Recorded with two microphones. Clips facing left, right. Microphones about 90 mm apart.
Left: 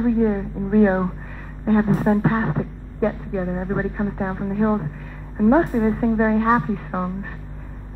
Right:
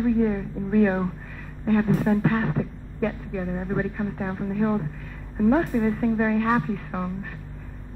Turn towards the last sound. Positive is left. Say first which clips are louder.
# left 3 dB
turn(degrees=30)  # may be behind; listen again after turning